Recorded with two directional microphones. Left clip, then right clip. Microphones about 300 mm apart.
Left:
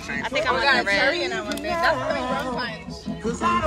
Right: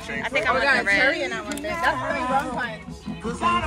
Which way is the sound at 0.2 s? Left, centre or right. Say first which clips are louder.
Right 1 dB; centre.